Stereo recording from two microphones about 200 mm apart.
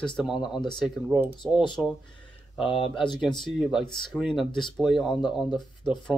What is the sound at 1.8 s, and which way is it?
Speech, 10° left (ahead or behind).